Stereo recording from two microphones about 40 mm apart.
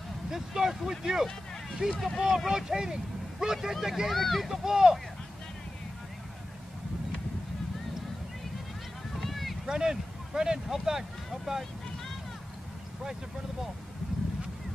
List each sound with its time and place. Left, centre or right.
0.3 s speech: centre
2.2 s speech: centre
4.1 s speech: centre
4.6 s speech: centre
9.2 s boat: centre
9.7 s speech: centre